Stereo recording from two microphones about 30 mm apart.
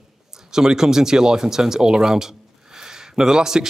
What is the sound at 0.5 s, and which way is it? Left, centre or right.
A man's voice, centre.